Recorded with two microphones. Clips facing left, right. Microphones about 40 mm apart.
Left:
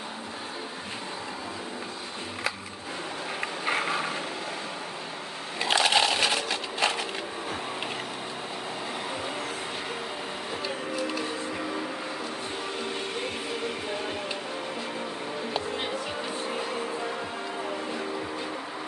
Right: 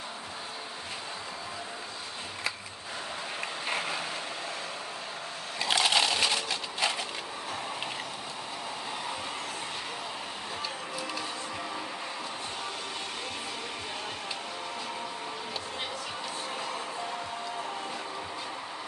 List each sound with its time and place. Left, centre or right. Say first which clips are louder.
3.3 s vehicle: left 5 dB; centre
5.6 s crushing: left 3 dB; centre